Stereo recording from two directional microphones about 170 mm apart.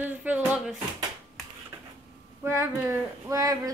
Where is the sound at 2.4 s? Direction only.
15° right (ahead or behind).